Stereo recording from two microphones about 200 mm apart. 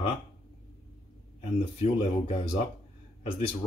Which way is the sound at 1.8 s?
30° left (ahead or behind).